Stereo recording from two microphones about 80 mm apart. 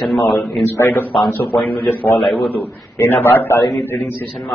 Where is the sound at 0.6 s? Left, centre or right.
Left.